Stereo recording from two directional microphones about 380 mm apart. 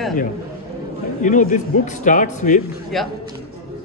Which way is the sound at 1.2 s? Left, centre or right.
Centre.